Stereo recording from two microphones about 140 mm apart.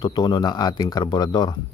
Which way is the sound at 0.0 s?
30° left (ahead or behind).